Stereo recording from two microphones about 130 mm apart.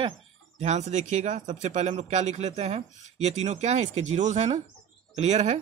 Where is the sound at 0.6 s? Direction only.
60° right (ahead or behind).